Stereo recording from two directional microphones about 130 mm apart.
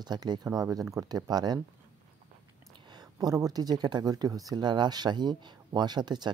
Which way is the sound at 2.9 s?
30° right (ahead or behind).